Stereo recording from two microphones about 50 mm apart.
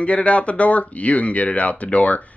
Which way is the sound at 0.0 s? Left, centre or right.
Left.